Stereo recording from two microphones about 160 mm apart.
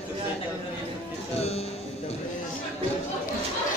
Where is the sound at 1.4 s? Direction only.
40° left (ahead or behind).